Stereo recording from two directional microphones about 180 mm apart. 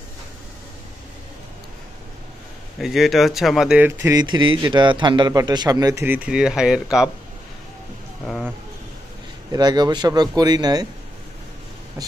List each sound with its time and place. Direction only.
2.8 s speech: centre (ahead or behind)
8.3 s a sound: centre (ahead or behind)
9.5 s a man's voice: 20° right (ahead or behind)